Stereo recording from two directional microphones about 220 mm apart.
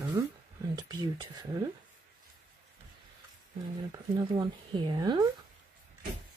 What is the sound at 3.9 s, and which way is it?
Speech, 20° right (ahead or behind).